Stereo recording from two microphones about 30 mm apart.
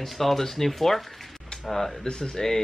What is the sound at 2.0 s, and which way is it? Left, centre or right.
Speech, centre.